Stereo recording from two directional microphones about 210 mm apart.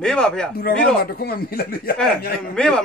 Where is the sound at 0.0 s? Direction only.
5° left (ahead or behind).